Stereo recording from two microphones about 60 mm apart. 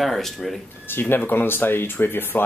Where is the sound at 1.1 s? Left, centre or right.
Left.